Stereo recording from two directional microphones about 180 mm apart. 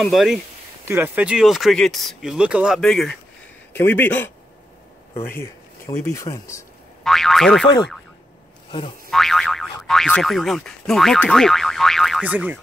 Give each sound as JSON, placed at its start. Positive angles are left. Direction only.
{"t": 0.0, "sound": "speech", "side_deg": 0}
{"t": 0.8, "sound": "speech", "side_deg": -10}
{"t": 7.0, "sound": "speech", "side_deg": 0}
{"t": 9.1, "sound": "speech", "side_deg": 0}